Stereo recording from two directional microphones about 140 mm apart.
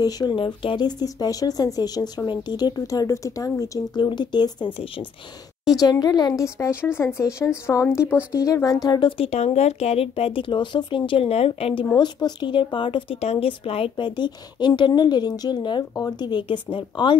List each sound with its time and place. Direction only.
0.0 s speech: 30° left (ahead or behind)
5.7 s speech: 30° left (ahead or behind)
9.2 s speech: 50° left (ahead or behind)
11.9 s speech: 30° left (ahead or behind)